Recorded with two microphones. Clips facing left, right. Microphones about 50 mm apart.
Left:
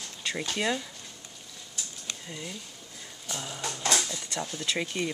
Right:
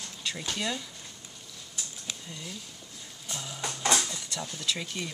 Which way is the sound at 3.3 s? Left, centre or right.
Centre.